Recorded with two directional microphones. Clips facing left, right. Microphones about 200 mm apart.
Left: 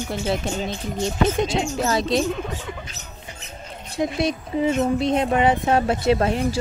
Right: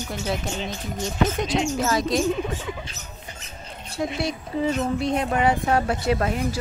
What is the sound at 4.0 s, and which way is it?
Speech, 20° left (ahead or behind).